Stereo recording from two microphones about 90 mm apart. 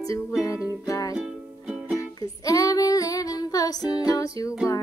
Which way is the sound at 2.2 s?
40° left (ahead or behind).